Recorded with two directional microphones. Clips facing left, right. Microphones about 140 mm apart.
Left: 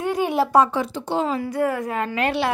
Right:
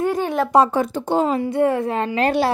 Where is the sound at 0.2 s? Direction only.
10° left (ahead or behind).